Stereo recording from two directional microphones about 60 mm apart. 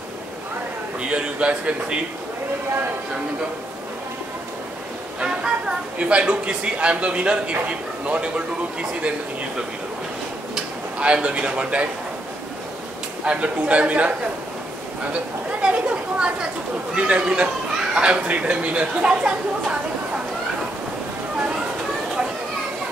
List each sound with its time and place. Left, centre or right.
1.1 s speech: centre
5.2 s speech: centre
10.5 s speech: centre
13.2 s speech: centre
15.6 s speech: centre